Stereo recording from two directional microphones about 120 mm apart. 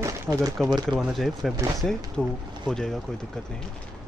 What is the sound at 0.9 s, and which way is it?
Speech, 5° right (ahead or behind).